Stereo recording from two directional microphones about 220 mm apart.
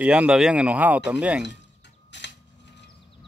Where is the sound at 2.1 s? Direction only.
55° left (ahead or behind).